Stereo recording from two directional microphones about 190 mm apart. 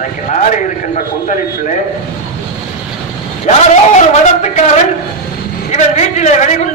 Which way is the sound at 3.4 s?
35° left (ahead or behind).